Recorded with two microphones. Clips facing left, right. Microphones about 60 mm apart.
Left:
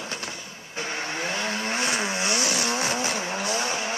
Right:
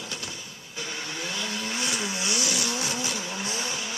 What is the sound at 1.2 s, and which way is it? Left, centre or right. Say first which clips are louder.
Vehicle: left 4 dB; left.